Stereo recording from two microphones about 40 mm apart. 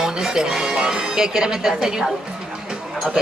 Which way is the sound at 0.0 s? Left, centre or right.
Centre.